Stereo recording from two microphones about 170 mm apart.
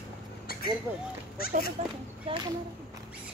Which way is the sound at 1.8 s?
45° right (ahead or behind).